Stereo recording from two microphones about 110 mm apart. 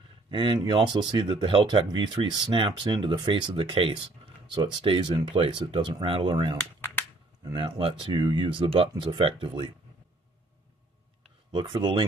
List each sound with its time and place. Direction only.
0.3 s speech: 50° right (ahead or behind)
11.5 s speech: 45° right (ahead or behind)